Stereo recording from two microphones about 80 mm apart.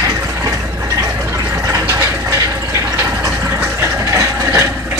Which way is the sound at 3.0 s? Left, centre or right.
Right.